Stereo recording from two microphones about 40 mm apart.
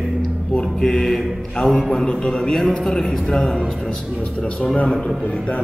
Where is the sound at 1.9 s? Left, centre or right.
Centre.